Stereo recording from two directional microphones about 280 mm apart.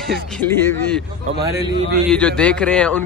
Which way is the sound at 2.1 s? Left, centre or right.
Centre.